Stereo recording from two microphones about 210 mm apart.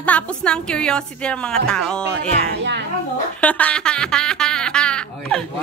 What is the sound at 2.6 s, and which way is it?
Speech, 55° right (ahead or behind).